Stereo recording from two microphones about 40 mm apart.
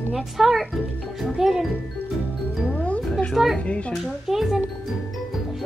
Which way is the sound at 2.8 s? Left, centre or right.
Left.